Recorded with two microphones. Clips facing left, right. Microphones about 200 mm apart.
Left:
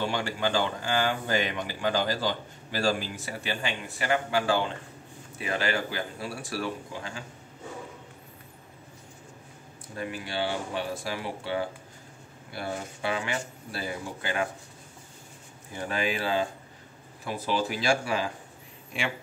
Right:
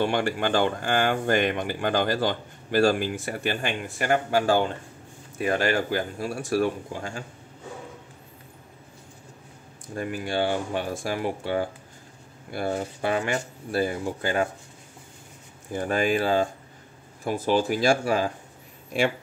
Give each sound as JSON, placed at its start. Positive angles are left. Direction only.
{"t": 0.0, "sound": "speech", "side_deg": -55}
{"t": 9.9, "sound": "speech", "side_deg": -50}
{"t": 15.7, "sound": "speech", "side_deg": -50}